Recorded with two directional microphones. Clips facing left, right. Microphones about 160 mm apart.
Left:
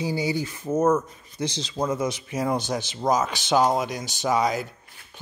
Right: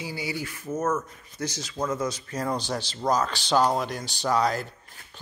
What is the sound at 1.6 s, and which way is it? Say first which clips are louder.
Speech: left 3 dB; 30° left (ahead or behind).